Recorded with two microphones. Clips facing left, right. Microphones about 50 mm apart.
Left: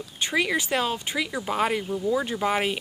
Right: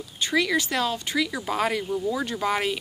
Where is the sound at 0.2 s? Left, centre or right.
Left.